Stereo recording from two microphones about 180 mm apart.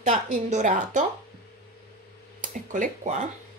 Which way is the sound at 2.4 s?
45° right (ahead or behind).